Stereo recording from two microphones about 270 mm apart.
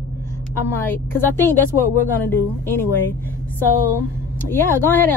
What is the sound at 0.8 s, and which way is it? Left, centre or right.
Speech, centre.